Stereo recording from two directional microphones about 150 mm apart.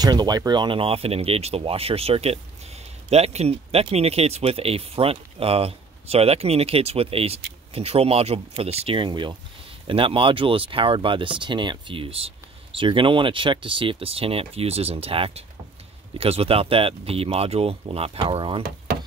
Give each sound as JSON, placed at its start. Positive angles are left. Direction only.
{"t": 0.0, "sound": "speech", "side_deg": -25}